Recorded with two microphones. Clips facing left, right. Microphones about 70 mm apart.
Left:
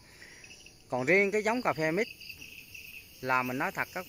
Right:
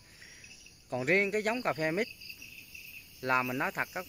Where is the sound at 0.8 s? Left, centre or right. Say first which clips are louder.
Left 3 dB; centre.